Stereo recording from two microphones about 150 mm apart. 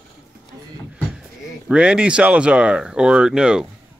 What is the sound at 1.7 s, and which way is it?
Speech, 10° right (ahead or behind).